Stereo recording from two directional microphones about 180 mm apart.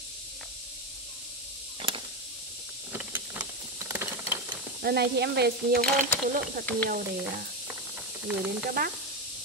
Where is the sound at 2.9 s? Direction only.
10° right (ahead or behind).